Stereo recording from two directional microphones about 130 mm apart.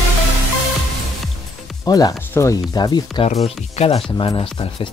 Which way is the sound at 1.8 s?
30° left (ahead or behind).